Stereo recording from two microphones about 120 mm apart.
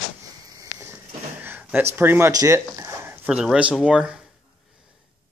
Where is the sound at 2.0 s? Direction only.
20° right (ahead or behind).